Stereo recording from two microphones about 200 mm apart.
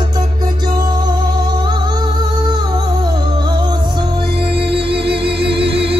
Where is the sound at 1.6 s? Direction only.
20° right (ahead or behind).